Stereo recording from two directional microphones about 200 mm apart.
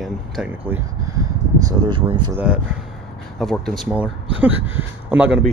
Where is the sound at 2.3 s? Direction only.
5° right (ahead or behind).